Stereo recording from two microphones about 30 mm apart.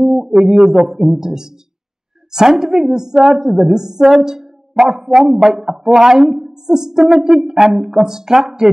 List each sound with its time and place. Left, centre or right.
0.0 s a woman's voice: centre